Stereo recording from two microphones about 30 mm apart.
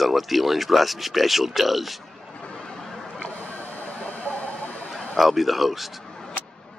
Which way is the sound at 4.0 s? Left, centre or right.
Left.